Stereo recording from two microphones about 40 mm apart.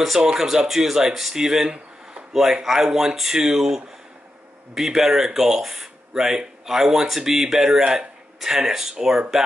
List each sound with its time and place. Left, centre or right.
0.2 s speech: centre
7.8 s a man's voice: right
8.4 s speech: centre